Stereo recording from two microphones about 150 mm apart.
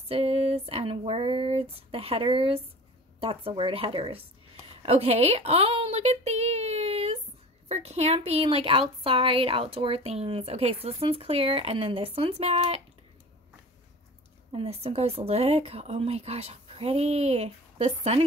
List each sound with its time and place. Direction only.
0.1 s a woman's voice: 40° right (ahead or behind)
14.5 s speech: 40° right (ahead or behind)